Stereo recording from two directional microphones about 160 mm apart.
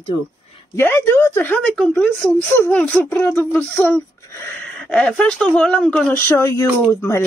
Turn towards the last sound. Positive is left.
turn(degrees=15)  # may be behind; listen again after turning